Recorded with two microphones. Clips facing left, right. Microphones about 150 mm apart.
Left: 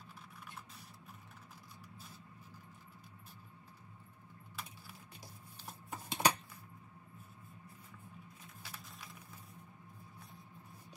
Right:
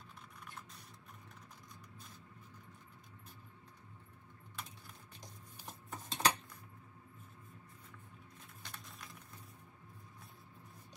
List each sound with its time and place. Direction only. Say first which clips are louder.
4.6 s wood: even; 5° left (ahead or behind)
5.7 s cutlery: left 2 dB; 10° left (ahead or behind)
8.6 s a sound: even; 5° left (ahead or behind)